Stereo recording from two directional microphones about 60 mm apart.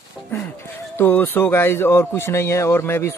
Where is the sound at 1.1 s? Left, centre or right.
Left.